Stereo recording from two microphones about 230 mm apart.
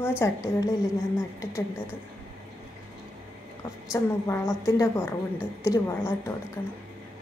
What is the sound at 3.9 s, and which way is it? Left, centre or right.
A woman's voice, centre.